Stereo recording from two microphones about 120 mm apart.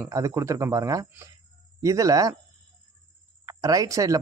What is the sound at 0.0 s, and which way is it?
Speech, 25° right (ahead or behind).